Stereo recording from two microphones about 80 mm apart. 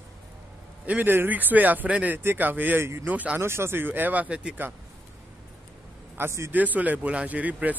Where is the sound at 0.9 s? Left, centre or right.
Right.